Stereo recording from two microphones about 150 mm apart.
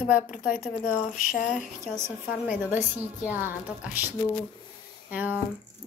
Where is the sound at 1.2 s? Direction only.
60° left (ahead or behind).